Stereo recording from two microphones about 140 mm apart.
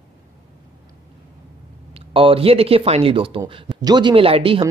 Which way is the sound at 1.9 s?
40° right (ahead or behind).